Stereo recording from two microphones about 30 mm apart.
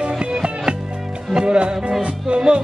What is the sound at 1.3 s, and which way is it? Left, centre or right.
Music, right.